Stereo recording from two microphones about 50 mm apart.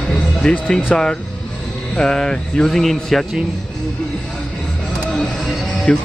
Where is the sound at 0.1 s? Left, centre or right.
Centre.